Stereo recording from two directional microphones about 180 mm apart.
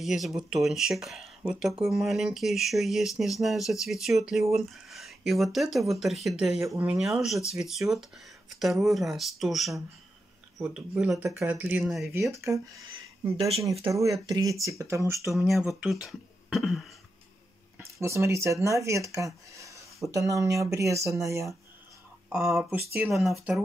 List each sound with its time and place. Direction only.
0.0 s speech: centre (ahead or behind)
6.6 s speech: 10° right (ahead or behind)
12.1 s speech: 15° right (ahead or behind)
15.3 s speech: centre (ahead or behind)
15.8 s beatboxing: centre (ahead or behind)
18.0 s speech: 15° right (ahead or behind)
22.5 s speech: centre (ahead or behind)